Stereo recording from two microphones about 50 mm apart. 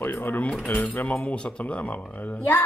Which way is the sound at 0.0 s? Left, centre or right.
Left.